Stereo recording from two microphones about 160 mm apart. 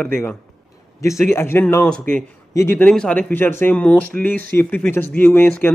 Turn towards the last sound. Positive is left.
turn(degrees=10)  # may be behind; listen again after turning